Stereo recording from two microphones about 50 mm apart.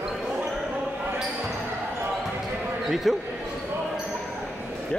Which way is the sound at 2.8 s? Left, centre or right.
Centre.